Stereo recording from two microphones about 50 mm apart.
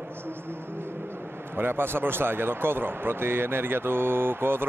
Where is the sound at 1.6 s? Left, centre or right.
Right.